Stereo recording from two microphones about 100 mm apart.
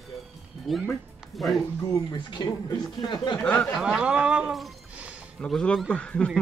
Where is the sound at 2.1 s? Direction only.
50° left (ahead or behind).